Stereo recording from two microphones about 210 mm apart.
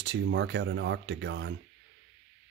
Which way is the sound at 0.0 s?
60° right (ahead or behind).